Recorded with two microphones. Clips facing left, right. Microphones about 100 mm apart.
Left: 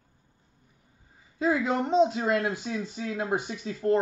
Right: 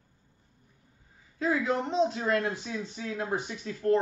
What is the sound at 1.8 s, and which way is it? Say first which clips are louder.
Speech: left 4 dB; 15° left (ahead or behind).